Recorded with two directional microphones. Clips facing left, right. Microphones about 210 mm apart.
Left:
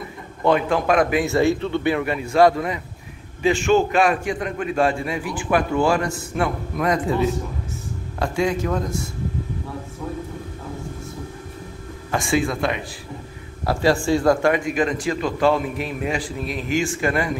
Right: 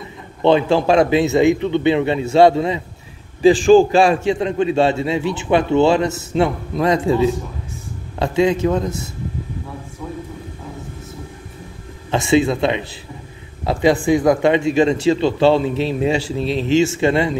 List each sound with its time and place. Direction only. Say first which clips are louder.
0.4 s a man's voice: right 5 dB; 25° right (ahead or behind)
12.1 s a man's voice: right 6 dB; 25° right (ahead or behind)